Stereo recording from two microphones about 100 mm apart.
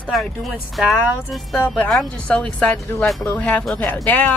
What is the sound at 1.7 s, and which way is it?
Speech, 10° left (ahead or behind).